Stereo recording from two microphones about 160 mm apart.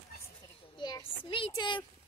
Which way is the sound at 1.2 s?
30° left (ahead or behind).